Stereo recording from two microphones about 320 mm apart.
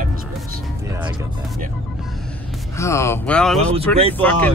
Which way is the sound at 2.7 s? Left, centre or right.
Centre.